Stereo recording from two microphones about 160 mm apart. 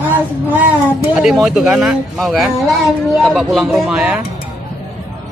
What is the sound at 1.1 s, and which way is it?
Speech, 5° right (ahead or behind).